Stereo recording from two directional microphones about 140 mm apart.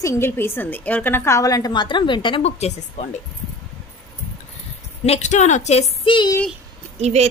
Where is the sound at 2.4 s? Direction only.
50° left (ahead or behind).